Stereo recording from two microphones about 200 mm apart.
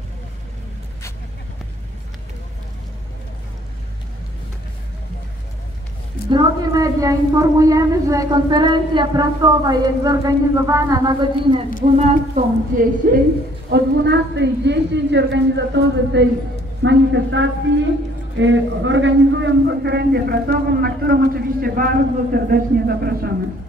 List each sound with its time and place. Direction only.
6.3 s a woman's voice: 15° right (ahead or behind)
11.8 s speech: 30° right (ahead or behind)
13.0 s a man's voice: 45° right (ahead or behind)
13.7 s a woman's voice: 60° right (ahead or behind)